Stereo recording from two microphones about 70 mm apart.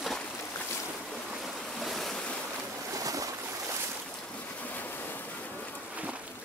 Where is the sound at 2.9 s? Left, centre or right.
Right.